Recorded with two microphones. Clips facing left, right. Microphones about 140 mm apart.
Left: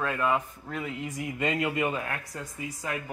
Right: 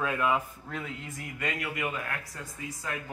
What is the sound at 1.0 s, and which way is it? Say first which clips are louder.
Speech: left 6 dB; 20° left (ahead or behind).